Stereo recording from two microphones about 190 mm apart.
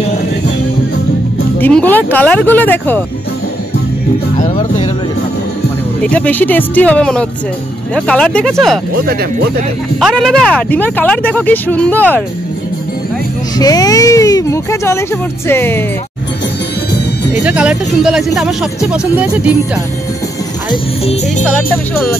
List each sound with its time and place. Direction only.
1.6 s speech: 10° left (ahead or behind)
6.0 s speech: 5° left (ahead or behind)
9.9 s speech: centre (ahead or behind)
13.6 s speech: 20° left (ahead or behind)
17.3 s speech: 10° right (ahead or behind)
20.7 s music: 30° left (ahead or behind)